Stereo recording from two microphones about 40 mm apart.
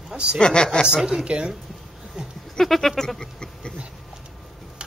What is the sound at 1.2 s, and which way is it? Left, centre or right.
Speech, right.